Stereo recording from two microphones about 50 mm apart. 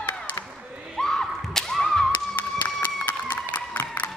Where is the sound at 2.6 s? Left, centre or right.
Left.